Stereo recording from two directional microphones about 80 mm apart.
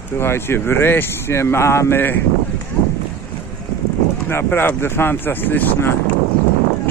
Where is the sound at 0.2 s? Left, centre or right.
Left.